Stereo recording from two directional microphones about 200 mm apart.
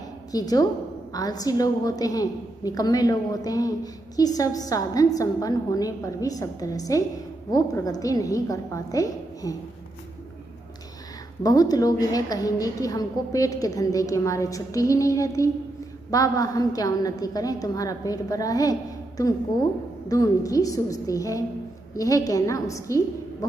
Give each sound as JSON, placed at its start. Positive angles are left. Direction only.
{"t": 0.3, "sound": "a woman's voice", "side_deg": 20}
{"t": 11.4, "sound": "a woman's voice", "side_deg": 20}